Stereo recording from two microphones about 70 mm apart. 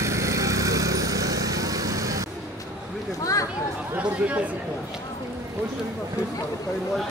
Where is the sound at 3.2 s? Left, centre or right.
Left.